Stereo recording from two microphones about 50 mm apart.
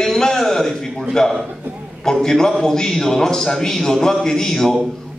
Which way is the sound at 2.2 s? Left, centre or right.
Centre.